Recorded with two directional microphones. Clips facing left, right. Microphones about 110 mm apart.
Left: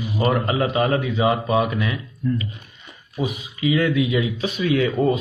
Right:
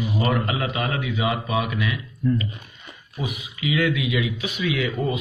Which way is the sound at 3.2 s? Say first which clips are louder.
Left 5 dB; 35° left (ahead or behind).